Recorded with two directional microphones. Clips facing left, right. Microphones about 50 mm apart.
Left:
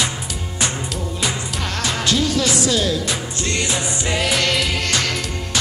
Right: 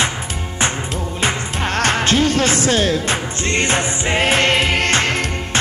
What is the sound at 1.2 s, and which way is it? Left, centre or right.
Music, right.